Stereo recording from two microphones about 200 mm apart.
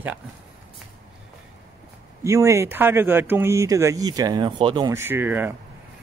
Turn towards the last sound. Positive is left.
turn(degrees=-10)  # may be behind; listen again after turning